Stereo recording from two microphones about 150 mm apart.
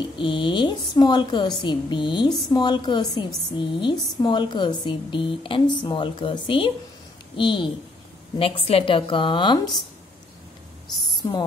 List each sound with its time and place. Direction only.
0.2 s a woman's voice: 35° left (ahead or behind)
11.2 s speech: 25° left (ahead or behind)